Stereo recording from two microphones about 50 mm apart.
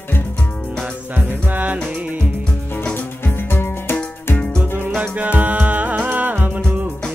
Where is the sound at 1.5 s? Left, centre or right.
Right.